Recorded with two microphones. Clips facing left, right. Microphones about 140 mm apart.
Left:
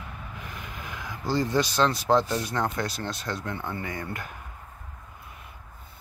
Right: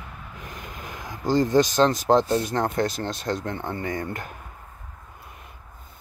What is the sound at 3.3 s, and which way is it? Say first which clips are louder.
Speech: right 5 dB; 35° right (ahead or behind).